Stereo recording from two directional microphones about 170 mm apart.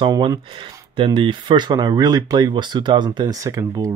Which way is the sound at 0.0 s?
25° right (ahead or behind).